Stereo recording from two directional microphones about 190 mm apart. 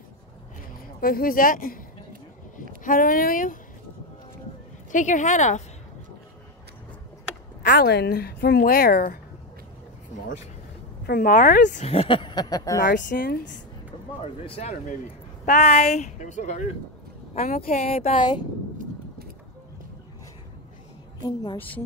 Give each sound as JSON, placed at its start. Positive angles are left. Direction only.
{"t": 1.0, "sound": "speech", "side_deg": 50}
{"t": 2.8, "sound": "speech", "side_deg": 45}
{"t": 4.9, "sound": "speech", "side_deg": 40}
{"t": 7.6, "sound": "speech", "side_deg": 60}
{"t": 11.1, "sound": "speech", "side_deg": 50}
{"t": 11.7, "sound": "speech", "side_deg": 35}
{"t": 12.9, "sound": "speech", "side_deg": 45}
{"t": 14.2, "sound": "speech", "side_deg": 30}
{"t": 17.6, "sound": "speech", "side_deg": 50}
{"t": 17.8, "sound": "speech", "side_deg": 30}
{"t": 21.2, "sound": "speech", "side_deg": 25}
{"t": 21.5, "sound": "a woman's voice", "side_deg": 10}